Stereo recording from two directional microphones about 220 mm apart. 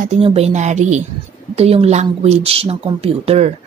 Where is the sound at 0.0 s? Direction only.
30° right (ahead or behind).